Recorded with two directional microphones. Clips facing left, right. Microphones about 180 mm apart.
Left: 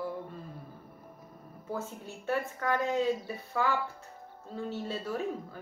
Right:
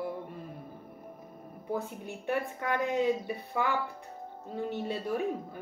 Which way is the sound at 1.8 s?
20° right (ahead or behind).